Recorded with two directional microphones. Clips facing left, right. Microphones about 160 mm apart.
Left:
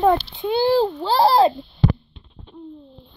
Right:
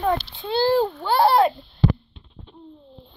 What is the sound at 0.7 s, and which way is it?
Speech, 35° left (ahead or behind).